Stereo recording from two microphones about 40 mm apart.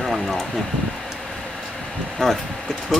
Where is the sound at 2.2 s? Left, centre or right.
Centre.